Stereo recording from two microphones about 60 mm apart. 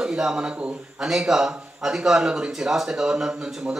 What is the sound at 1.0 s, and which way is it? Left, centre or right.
Speech, centre.